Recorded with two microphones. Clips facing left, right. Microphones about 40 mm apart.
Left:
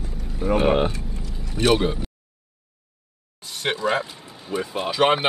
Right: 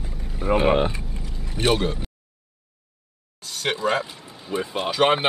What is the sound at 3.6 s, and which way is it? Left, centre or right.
Speech, centre.